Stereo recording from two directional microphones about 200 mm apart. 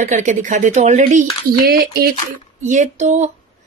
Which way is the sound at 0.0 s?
40° right (ahead or behind).